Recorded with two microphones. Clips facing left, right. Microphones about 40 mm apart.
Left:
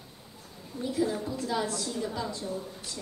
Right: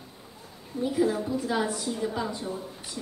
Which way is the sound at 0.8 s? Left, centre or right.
Centre.